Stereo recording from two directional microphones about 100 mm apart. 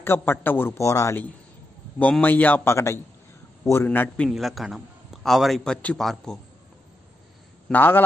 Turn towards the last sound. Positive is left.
turn(degrees=20)  # may be behind; listen again after turning